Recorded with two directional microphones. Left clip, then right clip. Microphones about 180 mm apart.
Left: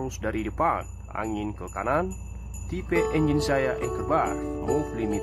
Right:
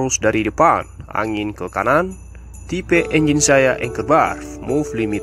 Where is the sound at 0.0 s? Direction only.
25° right (ahead or behind).